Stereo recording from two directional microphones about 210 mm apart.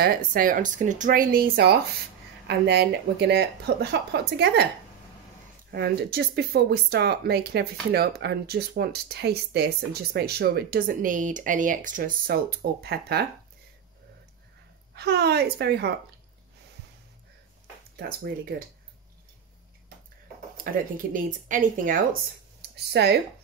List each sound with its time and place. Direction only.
0.0 s speech: 45° right (ahead or behind)
5.7 s speech: 50° right (ahead or behind)
15.0 s speech: 50° right (ahead or behind)
17.9 s speech: 45° right (ahead or behind)
20.6 s speech: 40° right (ahead or behind)
23.0 s speech: 50° right (ahead or behind)